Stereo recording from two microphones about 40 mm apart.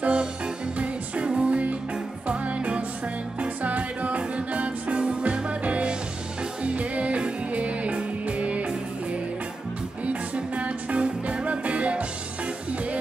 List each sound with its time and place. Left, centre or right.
0.0 s music: right
10.0 s music: right